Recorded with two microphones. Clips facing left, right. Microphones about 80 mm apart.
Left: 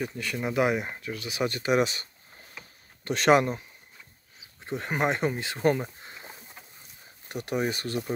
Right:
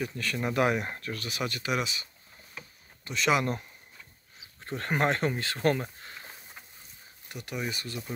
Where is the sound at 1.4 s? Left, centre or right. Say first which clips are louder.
Left 7 dB; left.